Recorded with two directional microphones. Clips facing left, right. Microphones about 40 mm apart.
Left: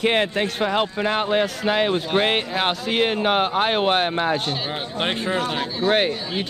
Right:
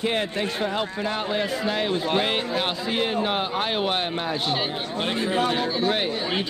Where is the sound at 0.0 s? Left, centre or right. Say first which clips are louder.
Left 5 dB; left.